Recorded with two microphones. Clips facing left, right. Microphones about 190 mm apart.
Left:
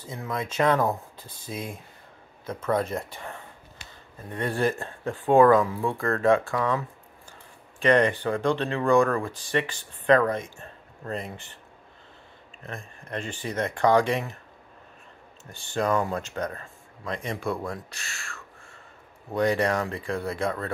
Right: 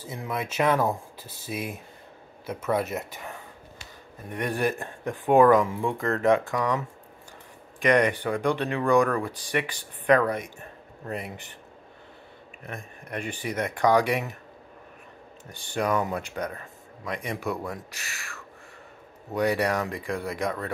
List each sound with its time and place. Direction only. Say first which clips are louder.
0.0 s speech: even; 10° right (ahead or behind)
7.8 s speech: left 1 dB; 15° right (ahead or behind)
12.6 s speech: even; 10° right (ahead or behind)
15.5 s speech: left 1 dB; 15° right (ahead or behind)
19.3 s speech: left 1 dB; 10° right (ahead or behind)